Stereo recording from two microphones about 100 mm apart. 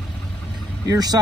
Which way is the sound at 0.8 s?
40° right (ahead or behind).